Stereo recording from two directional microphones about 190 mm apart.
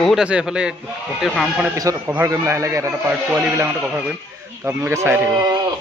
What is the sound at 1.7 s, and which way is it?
Speech, 15° right (ahead or behind).